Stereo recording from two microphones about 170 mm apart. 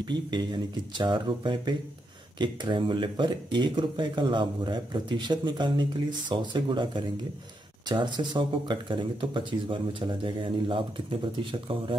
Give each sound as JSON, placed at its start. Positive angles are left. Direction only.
{"t": 0.0, "sound": "speech", "side_deg": -25}